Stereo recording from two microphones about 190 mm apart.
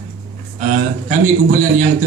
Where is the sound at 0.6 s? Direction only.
40° right (ahead or behind).